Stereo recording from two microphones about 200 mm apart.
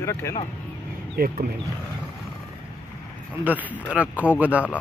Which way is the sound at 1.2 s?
50° right (ahead or behind).